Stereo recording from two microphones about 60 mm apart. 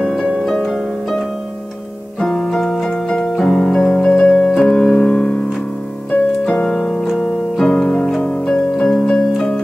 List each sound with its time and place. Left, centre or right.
0.1 s harp: centre
2.1 s music: centre
3.1 s keyboard: centre
4.9 s piano: centre
6.4 s keyboard: centre